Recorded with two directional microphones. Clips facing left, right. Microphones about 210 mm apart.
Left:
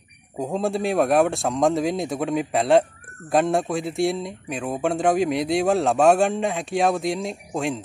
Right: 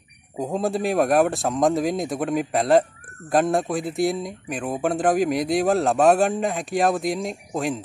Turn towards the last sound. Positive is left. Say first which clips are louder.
# even
turn(degrees=0)  # may be behind; listen again after turning